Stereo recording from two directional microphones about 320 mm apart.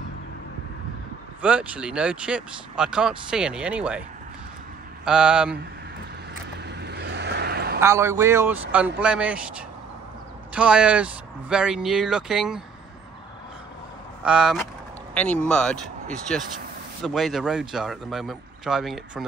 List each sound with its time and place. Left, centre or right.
1.4 s speech: centre
5.0 s speech: centre
6.6 s vehicle: right
7.8 s speech: centre
14.2 s speech: centre